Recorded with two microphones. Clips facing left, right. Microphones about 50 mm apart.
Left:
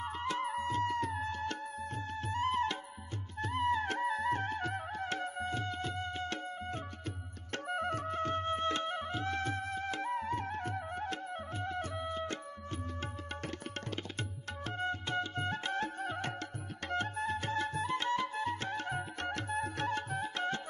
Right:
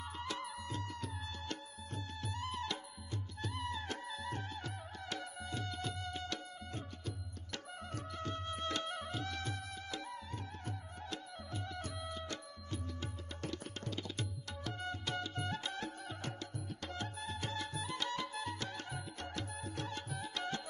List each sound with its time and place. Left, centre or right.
0.0 s music: left
19.2 s music: left